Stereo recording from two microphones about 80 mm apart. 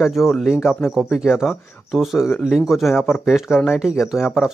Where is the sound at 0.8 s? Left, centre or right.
Centre.